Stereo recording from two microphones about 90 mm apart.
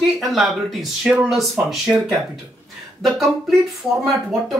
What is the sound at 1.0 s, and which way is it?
Speech, 15° right (ahead or behind).